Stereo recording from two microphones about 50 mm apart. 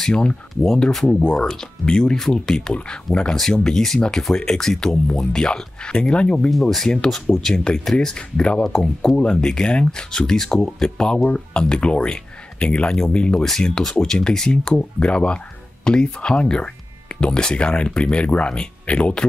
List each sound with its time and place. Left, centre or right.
0.1 s speech: left
6.5 s speech: centre
8.6 s speech: centre